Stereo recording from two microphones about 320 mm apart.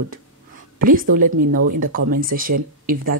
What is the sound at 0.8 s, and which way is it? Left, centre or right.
Speech, right.